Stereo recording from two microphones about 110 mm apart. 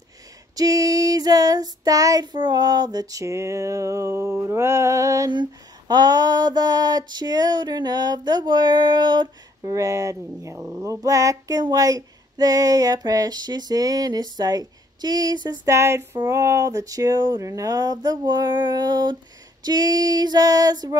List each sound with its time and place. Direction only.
0.6 s child singing: 35° right (ahead or behind)
5.3 s child singing: 40° right (ahead or behind)
9.8 s speech: 30° right (ahead or behind)
10.8 s child singing: 30° right (ahead or behind)
15.7 s speech: 25° right (ahead or behind)
16.2 s child singing: 30° right (ahead or behind)